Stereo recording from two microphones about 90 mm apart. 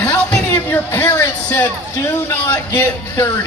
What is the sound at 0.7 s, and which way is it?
Speech, 25° left (ahead or behind).